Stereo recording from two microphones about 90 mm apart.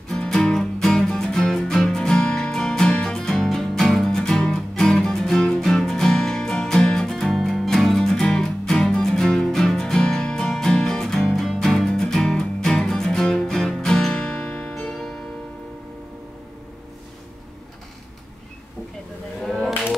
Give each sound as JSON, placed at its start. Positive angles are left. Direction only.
{"t": 0.1, "sound": "music", "side_deg": 5}